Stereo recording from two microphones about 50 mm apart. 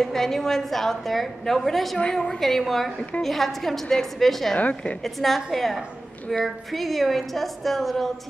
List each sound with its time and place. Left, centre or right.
0.0 s a woman's voice: centre
4.6 s a woman's voice: left
5.0 s a woman's voice: centre